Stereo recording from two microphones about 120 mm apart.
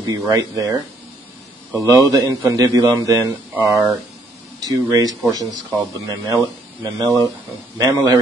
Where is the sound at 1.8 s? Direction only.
30° right (ahead or behind).